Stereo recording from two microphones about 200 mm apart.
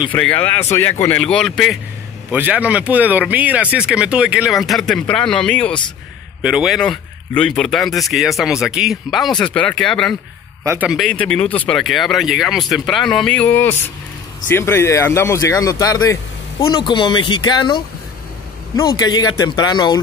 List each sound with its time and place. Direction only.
0.1 s speech: 10° left (ahead or behind)
10.6 s speech: 10° right (ahead or behind); by 20.0 s 20° left (ahead or behind)